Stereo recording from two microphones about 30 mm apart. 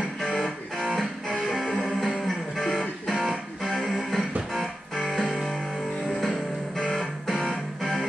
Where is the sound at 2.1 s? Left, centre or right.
Centre.